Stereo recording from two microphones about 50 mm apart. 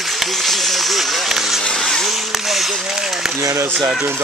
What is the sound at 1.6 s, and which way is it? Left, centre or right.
Vehicle, centre.